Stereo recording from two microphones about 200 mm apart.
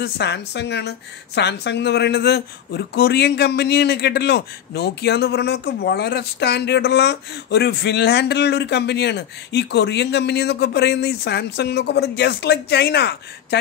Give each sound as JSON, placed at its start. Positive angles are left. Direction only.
{"t": 0.0, "sound": "a woman's voice", "side_deg": 55}